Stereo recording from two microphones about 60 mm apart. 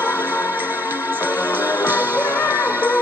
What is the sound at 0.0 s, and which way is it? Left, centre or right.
Music, right.